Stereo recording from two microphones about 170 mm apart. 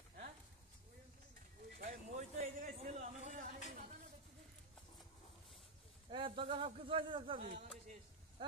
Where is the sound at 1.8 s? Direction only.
50° right (ahead or behind).